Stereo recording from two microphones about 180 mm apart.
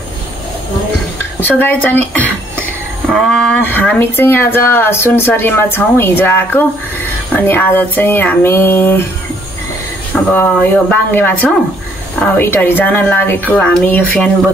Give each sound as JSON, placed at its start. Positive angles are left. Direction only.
{"t": 1.4, "sound": "speech", "side_deg": 10}
{"t": 10.3, "sound": "speech", "side_deg": 10}